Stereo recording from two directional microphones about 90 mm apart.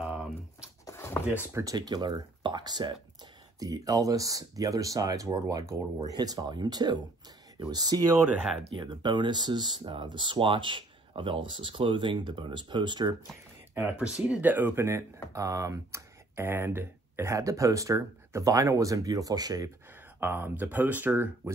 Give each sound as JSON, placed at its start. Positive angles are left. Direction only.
{"t": 0.0, "sound": "a sound", "side_deg": -10}
{"t": 0.8, "sound": "a sound", "side_deg": 30}
{"t": 1.5, "sound": "speech", "side_deg": -40}
{"t": 1.8, "sound": "speech", "side_deg": -50}
{"t": 6.1, "sound": "speech", "side_deg": -45}
{"t": 13.7, "sound": "speech", "side_deg": -15}
{"t": 14.8, "sound": "speech", "side_deg": -30}
{"t": 20.2, "sound": "speech", "side_deg": -20}